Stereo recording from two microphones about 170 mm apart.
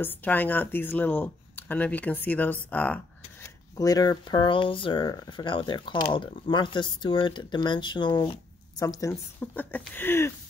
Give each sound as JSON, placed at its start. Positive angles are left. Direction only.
{"t": 0.0, "sound": "speech", "side_deg": 10}
{"t": 3.7, "sound": "speech", "side_deg": 20}